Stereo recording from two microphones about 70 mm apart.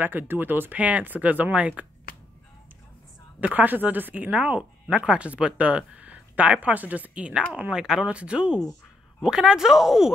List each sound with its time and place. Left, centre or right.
0.0 s speech: right
3.3 s speech: right; by 10.1 s centre